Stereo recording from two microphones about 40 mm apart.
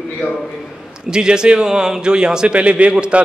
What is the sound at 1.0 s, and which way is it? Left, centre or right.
A man's voice, right.